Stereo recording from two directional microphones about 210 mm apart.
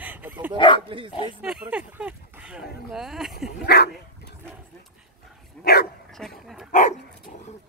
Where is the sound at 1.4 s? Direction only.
5° right (ahead or behind).